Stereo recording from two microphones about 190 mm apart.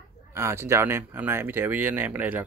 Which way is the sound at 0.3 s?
15° right (ahead or behind).